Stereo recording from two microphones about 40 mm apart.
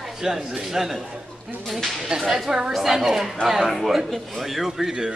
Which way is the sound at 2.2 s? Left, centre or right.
Centre.